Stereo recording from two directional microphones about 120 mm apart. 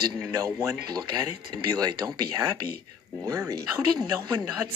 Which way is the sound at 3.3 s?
25° right (ahead or behind).